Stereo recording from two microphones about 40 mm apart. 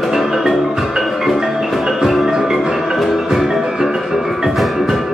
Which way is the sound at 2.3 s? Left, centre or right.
Centre.